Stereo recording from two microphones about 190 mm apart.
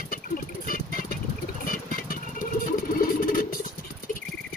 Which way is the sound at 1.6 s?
50° left (ahead or behind).